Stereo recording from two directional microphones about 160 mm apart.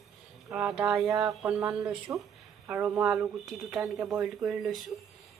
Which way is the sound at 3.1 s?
Centre (ahead or behind).